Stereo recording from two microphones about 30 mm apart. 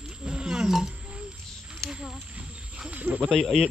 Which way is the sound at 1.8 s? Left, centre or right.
Centre.